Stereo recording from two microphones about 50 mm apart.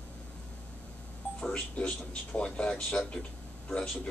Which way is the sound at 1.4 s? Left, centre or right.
Left.